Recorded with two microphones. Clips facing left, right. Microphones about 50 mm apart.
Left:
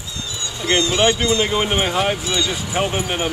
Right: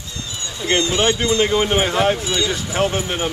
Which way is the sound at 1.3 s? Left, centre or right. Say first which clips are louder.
Right 2 dB; centre.